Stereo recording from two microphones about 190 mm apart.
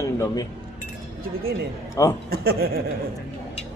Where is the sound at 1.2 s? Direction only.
50° right (ahead or behind).